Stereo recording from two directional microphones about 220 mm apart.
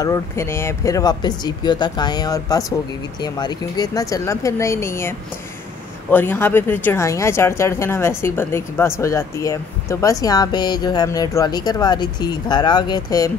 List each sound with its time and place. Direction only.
0.0 s a woman's voice: 15° left (ahead or behind)